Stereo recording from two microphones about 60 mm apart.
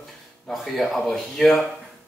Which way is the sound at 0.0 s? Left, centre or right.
Centre.